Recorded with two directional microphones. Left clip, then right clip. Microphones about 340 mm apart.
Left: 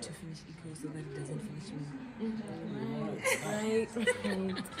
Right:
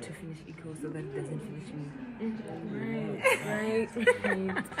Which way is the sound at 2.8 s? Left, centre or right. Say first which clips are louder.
Right 7 dB; centre.